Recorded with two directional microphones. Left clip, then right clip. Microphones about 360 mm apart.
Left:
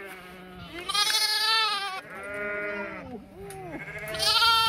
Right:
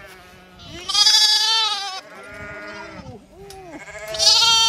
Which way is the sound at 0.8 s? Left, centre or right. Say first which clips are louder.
Right 10 dB; right.